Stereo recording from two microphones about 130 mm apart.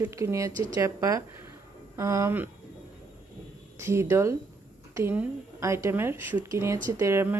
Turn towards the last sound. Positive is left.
turn(degrees=-20)  # may be behind; listen again after turning